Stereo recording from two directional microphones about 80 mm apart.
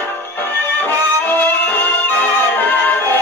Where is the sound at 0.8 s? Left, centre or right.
Left.